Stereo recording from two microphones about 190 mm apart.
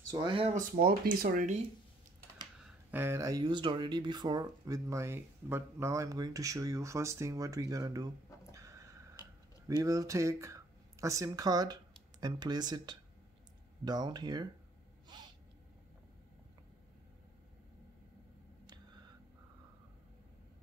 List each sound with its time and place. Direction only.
0.1 s speech: 25° right (ahead or behind)
0.6 s speech: 45° right (ahead or behind)
2.9 s speech: 10° right (ahead or behind)
15.1 s a sound: 20° right (ahead or behind)